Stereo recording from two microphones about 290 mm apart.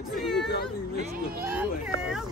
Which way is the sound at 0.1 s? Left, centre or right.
Centre.